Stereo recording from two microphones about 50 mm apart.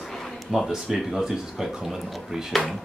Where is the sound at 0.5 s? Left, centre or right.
Centre.